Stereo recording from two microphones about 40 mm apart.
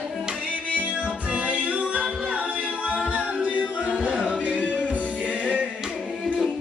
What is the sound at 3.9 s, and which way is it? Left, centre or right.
Singing, centre.